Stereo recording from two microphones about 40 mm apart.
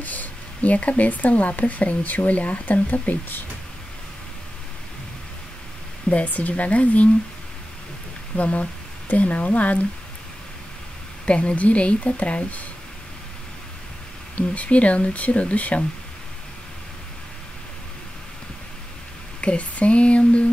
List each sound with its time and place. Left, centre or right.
0.0 s speech: left
6.1 s speech: left
8.4 s speech: left
11.2 s speech: left
14.3 s speech: left
19.4 s speech: left